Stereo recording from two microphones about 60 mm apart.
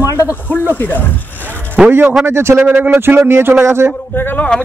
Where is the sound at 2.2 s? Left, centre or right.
Right.